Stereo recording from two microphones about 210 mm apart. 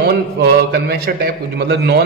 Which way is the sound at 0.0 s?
50° right (ahead or behind).